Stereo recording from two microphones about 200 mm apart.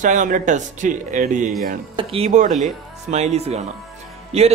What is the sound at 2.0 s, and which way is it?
Speech, 30° right (ahead or behind).